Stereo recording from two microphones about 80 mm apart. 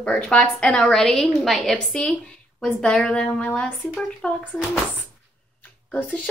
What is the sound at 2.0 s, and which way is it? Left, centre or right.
A woman's voice, centre.